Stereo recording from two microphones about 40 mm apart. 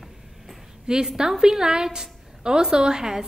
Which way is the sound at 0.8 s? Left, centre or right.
Centre.